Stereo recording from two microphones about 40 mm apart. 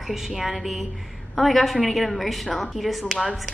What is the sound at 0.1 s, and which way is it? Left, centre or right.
A woman's voice, centre.